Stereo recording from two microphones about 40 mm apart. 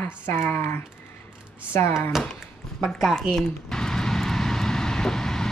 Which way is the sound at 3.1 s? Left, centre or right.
Centre.